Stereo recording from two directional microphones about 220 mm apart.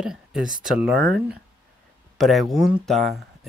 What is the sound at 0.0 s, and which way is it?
Speech, 5° right (ahead or behind).